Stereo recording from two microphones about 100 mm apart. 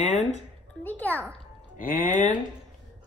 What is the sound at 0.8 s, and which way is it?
Speech, 20° left (ahead or behind).